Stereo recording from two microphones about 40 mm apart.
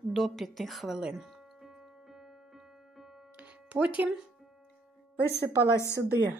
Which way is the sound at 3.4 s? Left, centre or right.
Right.